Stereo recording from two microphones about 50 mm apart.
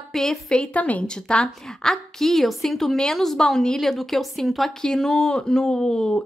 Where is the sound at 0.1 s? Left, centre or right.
Centre.